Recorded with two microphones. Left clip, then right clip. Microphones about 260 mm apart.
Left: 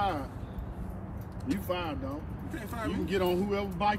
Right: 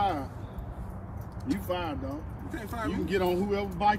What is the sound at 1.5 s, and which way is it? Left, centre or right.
Speech, centre.